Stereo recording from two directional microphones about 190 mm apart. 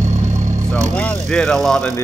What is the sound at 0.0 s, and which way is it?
Vehicle, 40° right (ahead or behind).